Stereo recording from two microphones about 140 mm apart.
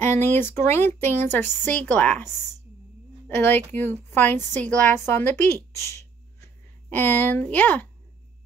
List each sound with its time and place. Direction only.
0.0 s speech: 15° left (ahead or behind)
3.3 s speech: 15° left (ahead or behind)